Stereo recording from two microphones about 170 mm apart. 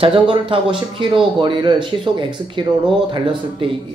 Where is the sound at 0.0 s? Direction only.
30° right (ahead or behind).